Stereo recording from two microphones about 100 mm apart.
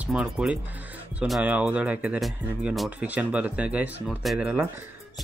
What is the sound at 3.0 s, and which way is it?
Speech, 15° right (ahead or behind).